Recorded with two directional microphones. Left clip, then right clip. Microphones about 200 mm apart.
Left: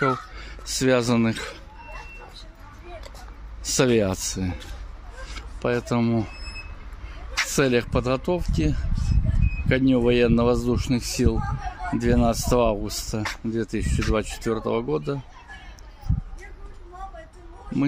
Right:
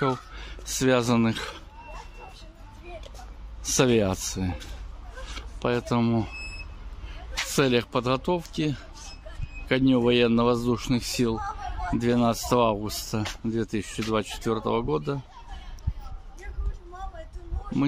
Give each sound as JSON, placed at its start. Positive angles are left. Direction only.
{"t": 0.0, "sound": "speech", "side_deg": -5}
{"t": 3.6, "sound": "speech", "side_deg": -5}
{"t": 7.3, "sound": "speech", "side_deg": 0}
{"t": 11.3, "sound": "a sound", "side_deg": -35}
{"t": 12.0, "sound": "speech", "side_deg": 0}